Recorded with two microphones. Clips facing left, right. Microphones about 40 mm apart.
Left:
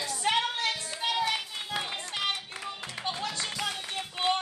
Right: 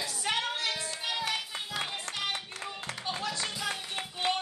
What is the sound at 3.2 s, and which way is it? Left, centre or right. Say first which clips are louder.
Music: left 1 dB; left.